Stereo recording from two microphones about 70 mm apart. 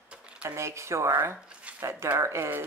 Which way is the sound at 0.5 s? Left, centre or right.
Right.